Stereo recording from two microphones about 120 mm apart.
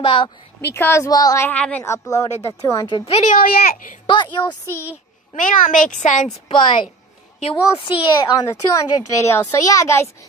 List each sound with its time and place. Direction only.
0.0 s a woman's voice: 45° left (ahead or behind)
0.7 s a child's voice: 20° left (ahead or behind)
1.5 s a woman's voice: 15° left (ahead or behind)
1.9 s a child's voice: 25° left (ahead or behind)
3.1 s speech: 65° left (ahead or behind)
4.0 s a woman's voice: 45° left (ahead or behind)
5.3 s a woman's voice: 90° left
6.5 s a woman's voice: 40° left (ahead or behind)
7.3 s a woman's voice: 55° left (ahead or behind)
7.8 s a child's voice: 45° left (ahead or behind); by 10.0 s 25° left (ahead or behind)